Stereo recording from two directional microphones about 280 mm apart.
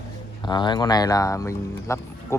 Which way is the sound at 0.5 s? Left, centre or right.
Centre.